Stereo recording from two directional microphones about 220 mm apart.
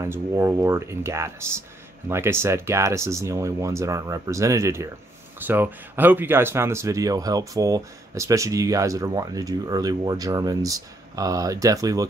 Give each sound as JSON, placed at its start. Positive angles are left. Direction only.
{"t": 0.0, "sound": "speech", "side_deg": -15}